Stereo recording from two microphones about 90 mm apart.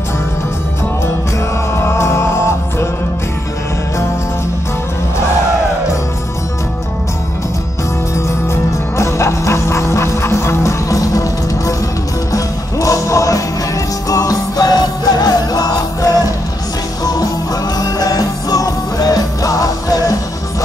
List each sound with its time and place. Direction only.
1.8 s music: 30° left (ahead or behind)
8.9 s music: 35° left (ahead or behind)